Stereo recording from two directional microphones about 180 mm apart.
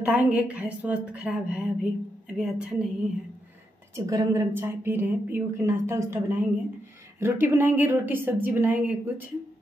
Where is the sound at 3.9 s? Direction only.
20° right (ahead or behind).